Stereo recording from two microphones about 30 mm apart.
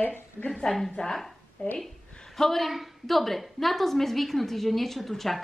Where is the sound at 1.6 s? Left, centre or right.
Left.